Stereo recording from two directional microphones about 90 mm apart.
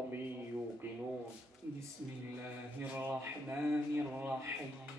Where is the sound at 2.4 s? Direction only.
20° right (ahead or behind).